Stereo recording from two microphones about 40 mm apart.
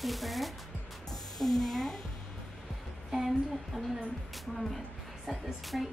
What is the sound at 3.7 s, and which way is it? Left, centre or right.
Speech, centre.